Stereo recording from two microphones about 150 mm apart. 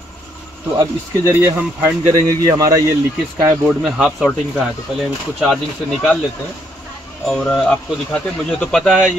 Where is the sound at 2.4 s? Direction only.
25° right (ahead or behind).